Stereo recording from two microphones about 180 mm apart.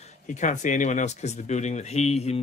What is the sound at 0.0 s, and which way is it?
Speech, 40° left (ahead or behind).